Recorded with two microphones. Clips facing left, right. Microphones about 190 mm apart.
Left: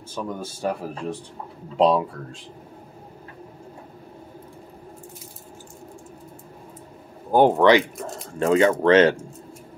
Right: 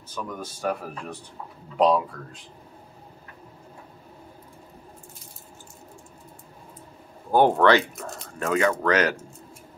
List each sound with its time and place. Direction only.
0.1 s speech: 30° left (ahead or behind)
1.8 s speech: 25° left (ahead or behind)
7.2 s speech: 15° left (ahead or behind)
8.0 s speech: 25° left (ahead or behind)